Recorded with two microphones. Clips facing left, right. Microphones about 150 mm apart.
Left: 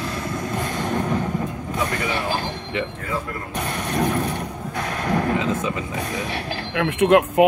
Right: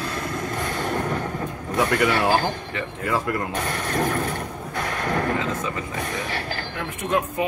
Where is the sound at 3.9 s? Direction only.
15° left (ahead or behind).